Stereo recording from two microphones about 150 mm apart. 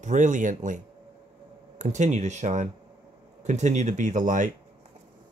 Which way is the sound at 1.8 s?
50° right (ahead or behind).